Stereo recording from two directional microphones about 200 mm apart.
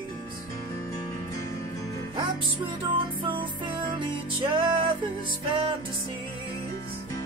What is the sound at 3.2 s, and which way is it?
Music, 25° right (ahead or behind).